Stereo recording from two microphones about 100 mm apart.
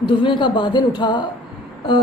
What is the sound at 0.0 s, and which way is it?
A woman's voice, 50° left (ahead or behind).